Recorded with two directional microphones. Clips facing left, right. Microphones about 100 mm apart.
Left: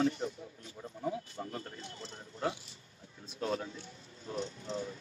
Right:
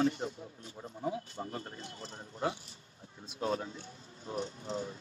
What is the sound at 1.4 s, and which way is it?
Speech, 25° right (ahead or behind).